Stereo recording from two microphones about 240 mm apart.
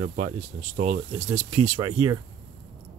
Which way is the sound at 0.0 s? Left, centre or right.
Right.